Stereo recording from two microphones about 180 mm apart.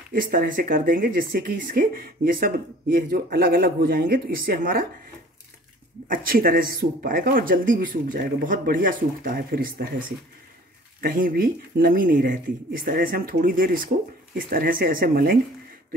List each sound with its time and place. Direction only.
0.1 s speech: 55° right (ahead or behind)
6.0 s speech: 55° right (ahead or behind)